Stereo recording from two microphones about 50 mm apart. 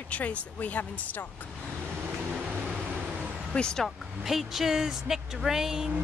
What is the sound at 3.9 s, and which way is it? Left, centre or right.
Speech, centre.